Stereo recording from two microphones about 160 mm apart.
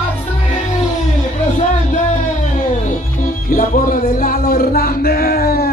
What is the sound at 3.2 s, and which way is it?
Music, 60° left (ahead or behind).